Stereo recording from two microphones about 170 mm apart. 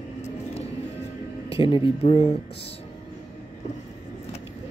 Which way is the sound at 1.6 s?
30° left (ahead or behind).